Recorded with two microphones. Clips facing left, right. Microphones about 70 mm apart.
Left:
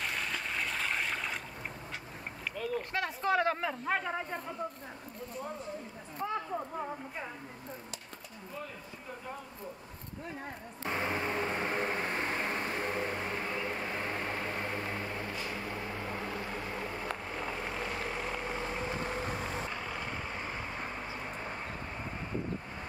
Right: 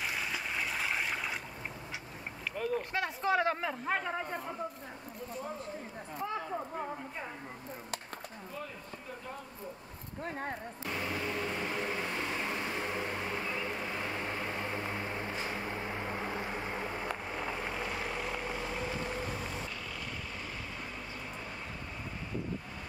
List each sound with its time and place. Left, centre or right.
0.0 s a sound: centre
2.5 s boat: right
2.9 s speech: centre
6.1 s speech: centre
10.8 s vehicle: left
14.7 s vehicle: right
17.1 s vehicle: centre
18.5 s vehicle: left